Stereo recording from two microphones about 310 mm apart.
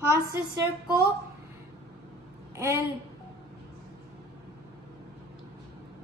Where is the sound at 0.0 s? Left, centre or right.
Centre.